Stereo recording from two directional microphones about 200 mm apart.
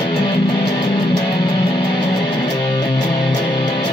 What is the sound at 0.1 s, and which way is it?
Music, 25° left (ahead or behind).